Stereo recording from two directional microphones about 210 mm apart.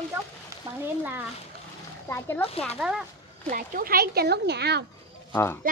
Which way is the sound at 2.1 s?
10° left (ahead or behind).